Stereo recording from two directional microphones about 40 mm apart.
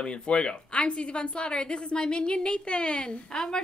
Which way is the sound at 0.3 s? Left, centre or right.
Left.